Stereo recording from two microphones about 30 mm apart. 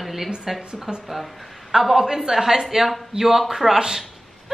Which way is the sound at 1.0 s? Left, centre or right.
Centre.